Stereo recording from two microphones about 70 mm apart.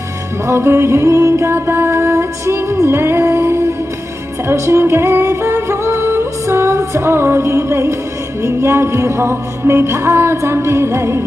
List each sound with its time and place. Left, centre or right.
0.5 s music: right